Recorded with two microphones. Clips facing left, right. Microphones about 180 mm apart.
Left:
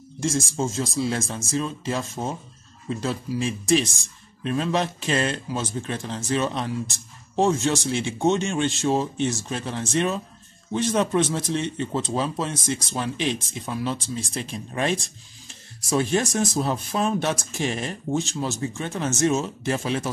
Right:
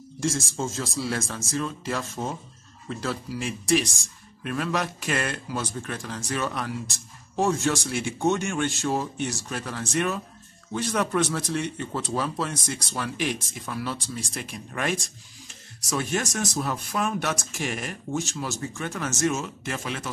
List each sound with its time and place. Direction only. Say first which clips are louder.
0.2 s speech: left 3 dB; 20° left (ahead or behind)